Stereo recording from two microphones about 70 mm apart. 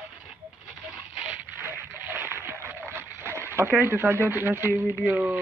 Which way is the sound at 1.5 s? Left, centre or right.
Right.